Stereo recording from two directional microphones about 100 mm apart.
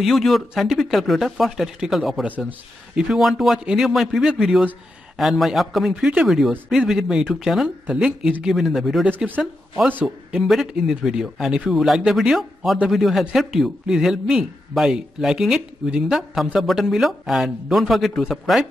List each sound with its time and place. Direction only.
0.0 s a man's voice: centre (ahead or behind)
9.1 s speech: 20° right (ahead or behind)
10.0 s a man's voice: centre (ahead or behind)